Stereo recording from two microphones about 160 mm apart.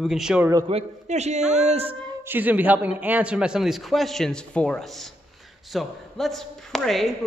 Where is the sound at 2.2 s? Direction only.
10° right (ahead or behind).